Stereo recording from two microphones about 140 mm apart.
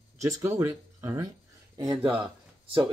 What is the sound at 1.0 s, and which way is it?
Speech, 20° right (ahead or behind).